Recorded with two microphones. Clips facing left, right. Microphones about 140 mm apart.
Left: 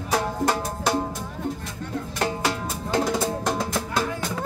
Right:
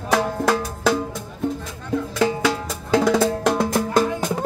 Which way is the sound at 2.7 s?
80° right.